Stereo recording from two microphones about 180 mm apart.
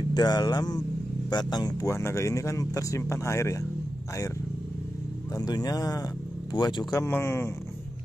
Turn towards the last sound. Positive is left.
turn(degrees=10)  # may be behind; listen again after turning